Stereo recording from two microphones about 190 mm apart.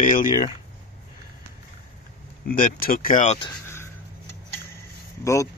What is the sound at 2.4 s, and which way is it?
Speech, 45° left (ahead or behind).